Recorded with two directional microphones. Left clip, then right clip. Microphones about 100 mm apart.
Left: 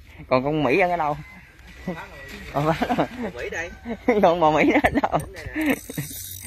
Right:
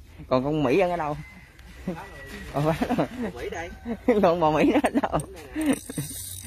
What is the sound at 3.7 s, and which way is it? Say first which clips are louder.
Speech: left 1 dB; centre (ahead or behind).